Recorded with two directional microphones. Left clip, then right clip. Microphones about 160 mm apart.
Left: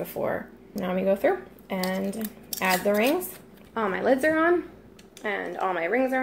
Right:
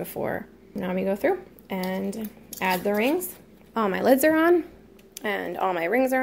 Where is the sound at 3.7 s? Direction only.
50° right (ahead or behind).